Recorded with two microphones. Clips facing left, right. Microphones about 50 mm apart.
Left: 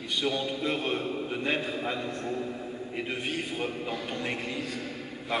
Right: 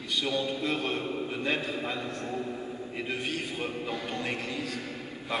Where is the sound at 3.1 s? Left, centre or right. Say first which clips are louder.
Right 1 dB; left.